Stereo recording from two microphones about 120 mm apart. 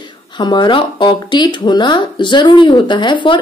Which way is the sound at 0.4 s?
40° left (ahead or behind).